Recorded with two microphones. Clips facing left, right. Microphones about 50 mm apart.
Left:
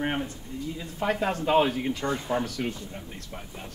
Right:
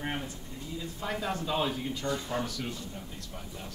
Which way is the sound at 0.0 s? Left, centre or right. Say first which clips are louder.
Left 6 dB; left.